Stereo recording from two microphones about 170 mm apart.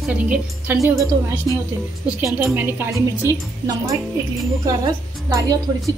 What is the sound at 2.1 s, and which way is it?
A woman's voice, 15° right (ahead or behind).